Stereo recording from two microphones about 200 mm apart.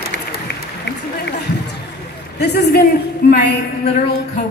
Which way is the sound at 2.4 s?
55° left (ahead or behind).